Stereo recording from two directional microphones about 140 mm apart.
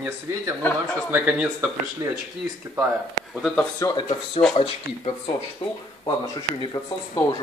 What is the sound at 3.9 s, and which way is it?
Speech, 30° left (ahead or behind).